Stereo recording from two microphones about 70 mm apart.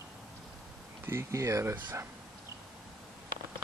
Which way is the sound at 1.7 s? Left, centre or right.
Right.